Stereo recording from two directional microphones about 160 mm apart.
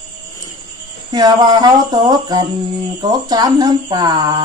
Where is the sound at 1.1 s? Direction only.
25° right (ahead or behind).